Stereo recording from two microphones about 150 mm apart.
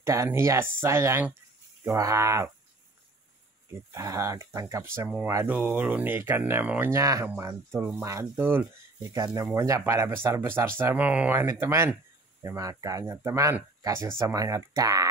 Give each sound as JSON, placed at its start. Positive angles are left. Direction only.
{"t": 0.0, "sound": "speech", "side_deg": -20}
{"t": 3.9, "sound": "speech", "side_deg": -20}